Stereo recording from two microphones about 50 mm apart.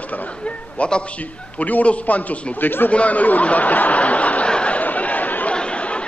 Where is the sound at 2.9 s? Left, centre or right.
Left.